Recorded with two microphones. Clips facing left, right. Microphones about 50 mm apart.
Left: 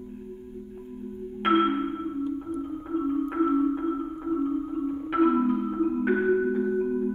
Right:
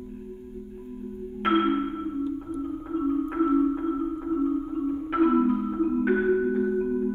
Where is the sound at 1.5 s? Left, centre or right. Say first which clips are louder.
Left 1 dB; left.